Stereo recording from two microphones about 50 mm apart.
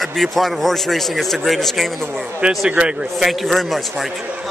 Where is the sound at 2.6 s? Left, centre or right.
Right.